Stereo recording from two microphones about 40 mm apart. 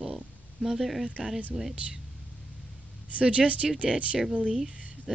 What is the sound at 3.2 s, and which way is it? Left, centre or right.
Speech, right.